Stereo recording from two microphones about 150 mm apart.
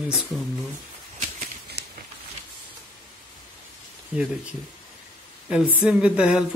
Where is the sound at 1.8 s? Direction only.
90° right.